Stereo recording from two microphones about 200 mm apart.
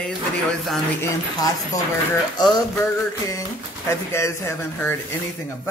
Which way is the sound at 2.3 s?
20° left (ahead or behind).